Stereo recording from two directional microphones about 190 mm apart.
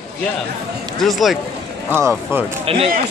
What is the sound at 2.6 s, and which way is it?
Speech, 30° right (ahead or behind).